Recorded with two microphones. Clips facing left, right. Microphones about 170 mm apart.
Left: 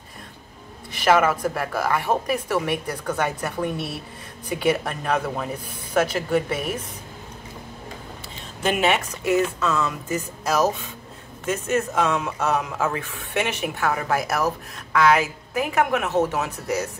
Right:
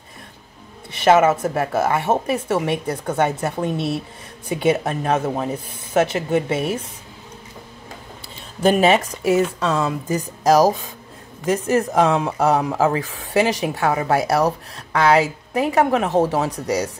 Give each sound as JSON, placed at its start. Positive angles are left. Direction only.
{"t": 1.0, "sound": "speech", "side_deg": -25}
{"t": 8.6, "sound": "speech", "side_deg": -35}